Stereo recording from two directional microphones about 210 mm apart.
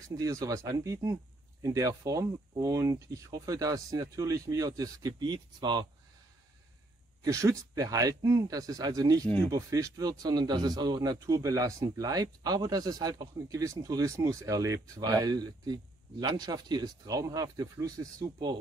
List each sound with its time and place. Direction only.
0.1 s speech: 15° right (ahead or behind)
7.2 s speech: 15° right (ahead or behind)